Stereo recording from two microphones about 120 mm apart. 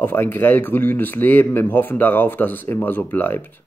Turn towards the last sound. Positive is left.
turn(degrees=15)  # may be behind; listen again after turning